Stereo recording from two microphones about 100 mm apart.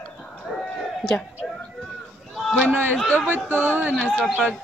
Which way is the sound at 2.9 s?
10° left (ahead or behind).